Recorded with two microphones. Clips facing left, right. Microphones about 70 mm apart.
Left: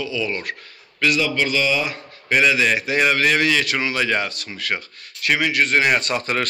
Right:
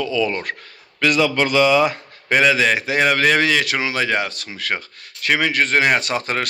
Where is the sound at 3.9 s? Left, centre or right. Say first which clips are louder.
Right 1 dB; right.